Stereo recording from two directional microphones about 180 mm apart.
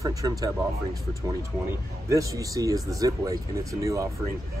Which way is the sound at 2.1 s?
20° right (ahead or behind).